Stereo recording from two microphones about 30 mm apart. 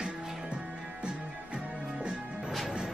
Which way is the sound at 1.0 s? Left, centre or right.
Right.